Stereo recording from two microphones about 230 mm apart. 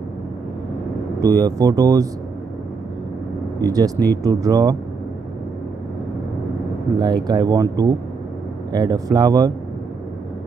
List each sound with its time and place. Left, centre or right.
1.2 s speech: centre
3.7 s speech: centre
7.0 s speech: centre